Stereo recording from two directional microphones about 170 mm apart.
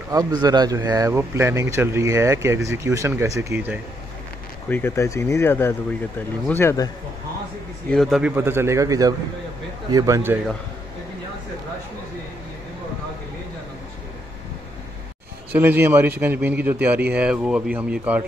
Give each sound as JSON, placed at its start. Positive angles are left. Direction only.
{"t": 0.1, "sound": "speech", "side_deg": -25}
{"t": 4.6, "sound": "speech", "side_deg": 10}
{"t": 7.9, "sound": "a man's voice", "side_deg": 0}
{"t": 8.4, "sound": "speech", "side_deg": -15}
{"t": 15.5, "sound": "speech", "side_deg": -10}